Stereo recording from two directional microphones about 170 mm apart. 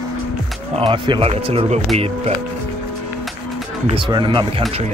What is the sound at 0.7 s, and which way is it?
Speech, 30° right (ahead or behind).